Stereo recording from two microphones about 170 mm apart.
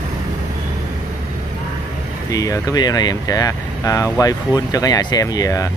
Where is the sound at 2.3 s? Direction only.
20° left (ahead or behind).